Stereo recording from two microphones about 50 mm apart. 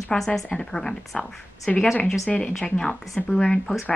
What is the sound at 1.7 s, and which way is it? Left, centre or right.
A woman's voice, left.